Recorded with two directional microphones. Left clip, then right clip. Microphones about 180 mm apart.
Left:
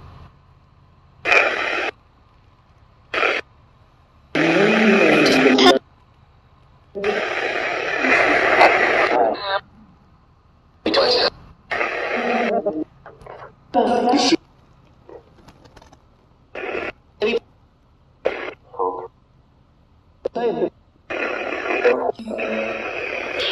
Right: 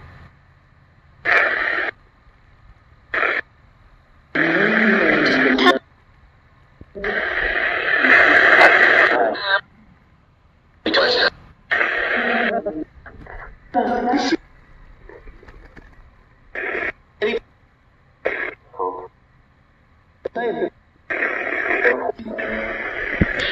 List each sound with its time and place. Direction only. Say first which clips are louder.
1.2 s radio: even; 40° left (ahead or behind)
3.1 s a sound: even; 40° left (ahead or behind)
4.3 s cough: left 1 dB; 40° left (ahead or behind)
7.0 s radio: even; 40° left (ahead or behind); by 9.7 s 15° left (ahead or behind)
10.8 s radio: even; 20° left (ahead or behind)
13.0 s a sound: even; 50° left (ahead or behind)
16.5 s rodents: right 3 dB; 55° left (ahead or behind)
18.2 s radio: right 1 dB; 55° left (ahead or behind)
20.2 s radio: left 1 dB; 55° left (ahead or behind)